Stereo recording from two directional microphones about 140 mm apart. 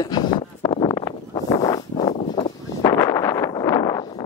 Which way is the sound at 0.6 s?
30° left (ahead or behind).